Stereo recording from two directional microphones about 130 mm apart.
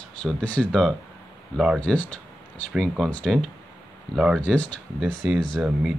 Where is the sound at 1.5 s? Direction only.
5° right (ahead or behind).